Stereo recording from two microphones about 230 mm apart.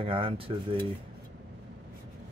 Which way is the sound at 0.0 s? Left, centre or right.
Right.